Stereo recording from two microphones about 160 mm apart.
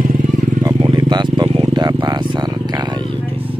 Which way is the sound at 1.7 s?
25° right (ahead or behind).